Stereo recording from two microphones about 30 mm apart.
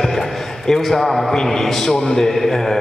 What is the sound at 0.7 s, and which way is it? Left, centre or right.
Speech, centre.